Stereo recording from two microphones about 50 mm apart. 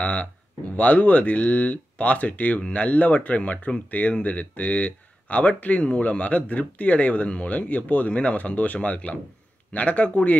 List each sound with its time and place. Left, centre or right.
0.0 s speech: left